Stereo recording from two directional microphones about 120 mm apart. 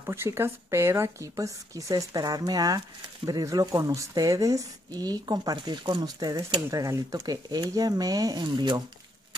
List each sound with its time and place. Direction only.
0.0 s a woman's voice: 20° right (ahead or behind); by 8.8 s 35° right (ahead or behind)